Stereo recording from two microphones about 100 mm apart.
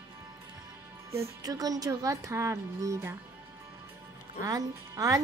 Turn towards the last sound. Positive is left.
turn(degrees=-35)  # may be behind; listen again after turning